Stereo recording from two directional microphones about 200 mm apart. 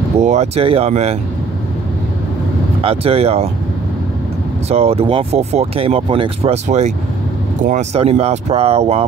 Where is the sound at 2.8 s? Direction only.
30° right (ahead or behind).